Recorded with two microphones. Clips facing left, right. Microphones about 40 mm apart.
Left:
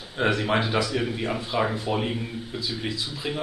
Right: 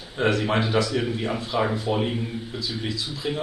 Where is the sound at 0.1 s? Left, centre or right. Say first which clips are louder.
Right 1 dB; centre.